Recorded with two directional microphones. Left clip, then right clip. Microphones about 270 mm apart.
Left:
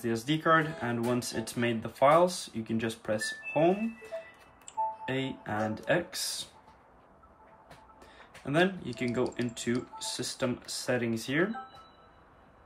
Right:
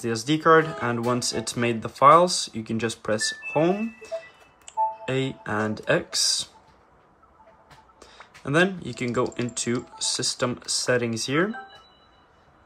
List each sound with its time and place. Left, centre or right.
0.0 s speech: right
5.0 s speech: right
8.0 s speech: right